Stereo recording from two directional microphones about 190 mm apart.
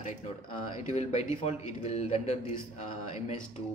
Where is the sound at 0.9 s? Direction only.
35° left (ahead or behind).